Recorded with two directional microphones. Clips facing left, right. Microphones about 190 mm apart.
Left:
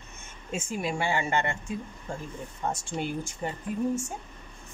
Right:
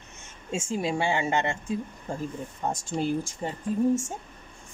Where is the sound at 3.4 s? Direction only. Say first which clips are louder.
Right 1 dB; 30° right (ahead or behind).